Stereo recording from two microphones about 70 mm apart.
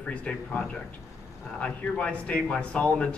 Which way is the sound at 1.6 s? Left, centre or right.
Centre.